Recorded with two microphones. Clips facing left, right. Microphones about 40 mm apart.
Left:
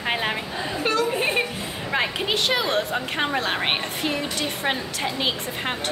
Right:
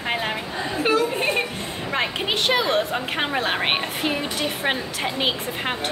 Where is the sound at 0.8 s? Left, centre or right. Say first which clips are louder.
Right 2 dB; centre.